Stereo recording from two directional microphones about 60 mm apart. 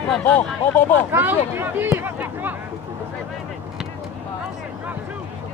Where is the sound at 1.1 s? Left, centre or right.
Right.